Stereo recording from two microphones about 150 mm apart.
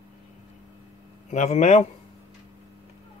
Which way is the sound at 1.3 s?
50° left (ahead or behind).